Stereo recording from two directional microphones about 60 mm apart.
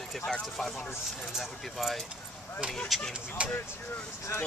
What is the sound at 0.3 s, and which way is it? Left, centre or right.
Speech, centre.